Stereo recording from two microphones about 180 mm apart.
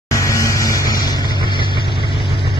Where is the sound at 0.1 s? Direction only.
15° left (ahead or behind).